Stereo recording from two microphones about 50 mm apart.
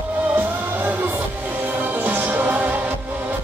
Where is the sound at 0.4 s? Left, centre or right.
Right.